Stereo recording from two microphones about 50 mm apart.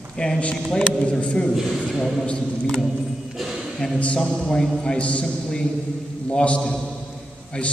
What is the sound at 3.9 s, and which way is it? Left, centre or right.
A man's voice, left.